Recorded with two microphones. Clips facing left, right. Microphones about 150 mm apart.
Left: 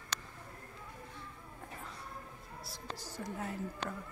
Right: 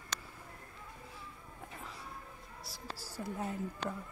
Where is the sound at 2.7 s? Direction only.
10° right (ahead or behind).